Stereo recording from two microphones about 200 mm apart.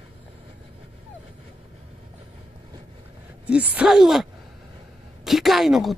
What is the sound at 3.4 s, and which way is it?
Groan, 5° right (ahead or behind).